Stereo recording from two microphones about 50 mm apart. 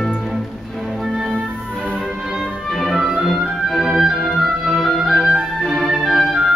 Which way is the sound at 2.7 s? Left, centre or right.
Centre.